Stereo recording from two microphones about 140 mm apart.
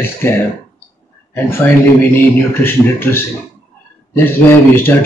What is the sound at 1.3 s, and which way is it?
Speech, 15° left (ahead or behind).